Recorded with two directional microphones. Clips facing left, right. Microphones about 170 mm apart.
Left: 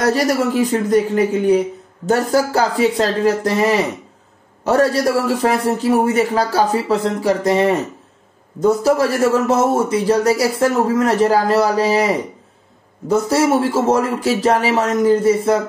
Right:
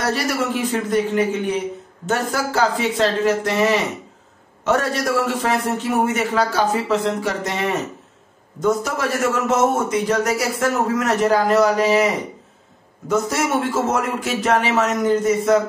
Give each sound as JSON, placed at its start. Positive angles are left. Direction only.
{"t": 0.0, "sound": "a man's voice", "side_deg": 40}